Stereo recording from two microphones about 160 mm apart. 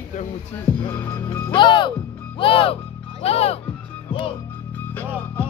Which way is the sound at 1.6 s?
30° left (ahead or behind).